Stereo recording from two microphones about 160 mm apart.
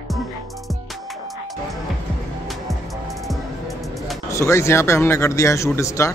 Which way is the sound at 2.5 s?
Centre (ahead or behind).